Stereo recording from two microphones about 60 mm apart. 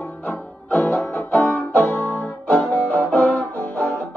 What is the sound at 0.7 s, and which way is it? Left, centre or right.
Music, left.